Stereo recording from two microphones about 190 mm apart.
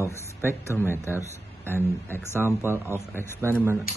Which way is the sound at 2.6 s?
10° right (ahead or behind).